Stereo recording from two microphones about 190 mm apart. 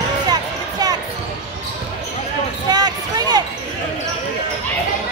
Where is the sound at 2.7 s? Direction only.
20° right (ahead or behind).